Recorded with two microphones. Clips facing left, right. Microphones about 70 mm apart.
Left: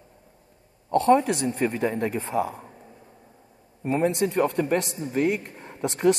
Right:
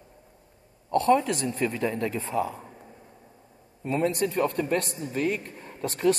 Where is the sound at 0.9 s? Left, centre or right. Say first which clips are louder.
Left 3 dB; left.